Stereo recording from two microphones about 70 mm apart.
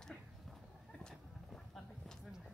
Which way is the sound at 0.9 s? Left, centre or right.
Centre.